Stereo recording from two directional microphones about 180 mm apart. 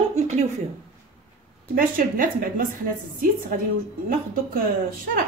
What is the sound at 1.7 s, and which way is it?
Speech, 50° right (ahead or behind).